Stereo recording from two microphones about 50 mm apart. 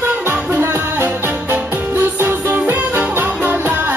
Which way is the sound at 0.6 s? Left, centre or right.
Right.